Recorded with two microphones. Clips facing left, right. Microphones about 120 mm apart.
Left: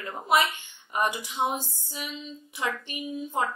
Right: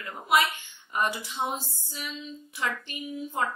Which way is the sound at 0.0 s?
25° left (ahead or behind).